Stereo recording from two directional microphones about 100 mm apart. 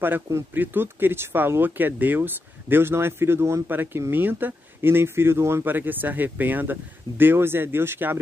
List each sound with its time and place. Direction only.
0.0 s speech: 20° right (ahead or behind)